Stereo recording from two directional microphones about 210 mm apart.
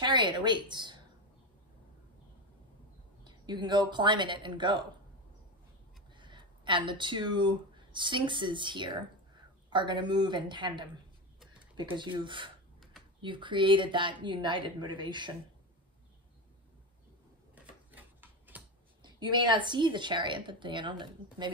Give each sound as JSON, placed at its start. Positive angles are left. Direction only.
{"t": 0.0, "sound": "a woman's voice", "side_deg": -20}
{"t": 3.3, "sound": "a woman's voice", "side_deg": -20}
{"t": 6.1, "sound": "a woman's voice", "side_deg": -20}
{"t": 17.6, "sound": "a sound", "side_deg": -10}
{"t": 19.0, "sound": "a woman's voice", "side_deg": -20}